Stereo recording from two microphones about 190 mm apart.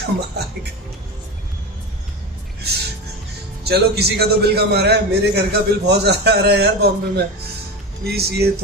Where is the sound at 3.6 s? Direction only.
60° right (ahead or behind).